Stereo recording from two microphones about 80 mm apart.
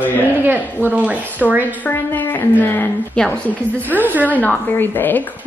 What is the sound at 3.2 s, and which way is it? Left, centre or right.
Speech, centre.